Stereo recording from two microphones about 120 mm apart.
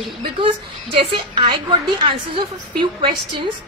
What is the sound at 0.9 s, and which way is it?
A woman's voice, 45° right (ahead or behind).